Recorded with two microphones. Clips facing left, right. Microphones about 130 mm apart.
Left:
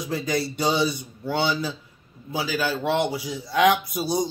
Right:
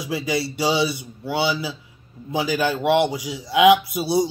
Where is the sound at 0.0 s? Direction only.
5° right (ahead or behind).